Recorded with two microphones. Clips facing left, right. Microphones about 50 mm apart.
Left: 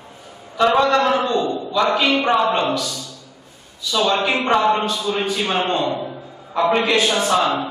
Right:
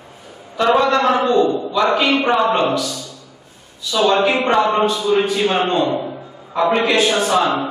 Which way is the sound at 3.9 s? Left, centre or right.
Centre.